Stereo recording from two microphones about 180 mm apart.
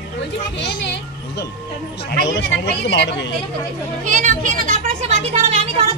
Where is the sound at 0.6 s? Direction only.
70° left (ahead or behind).